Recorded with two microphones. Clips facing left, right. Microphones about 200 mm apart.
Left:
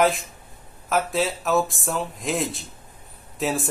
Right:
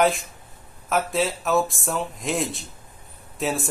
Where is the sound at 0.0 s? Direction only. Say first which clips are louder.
Even; centre (ahead or behind).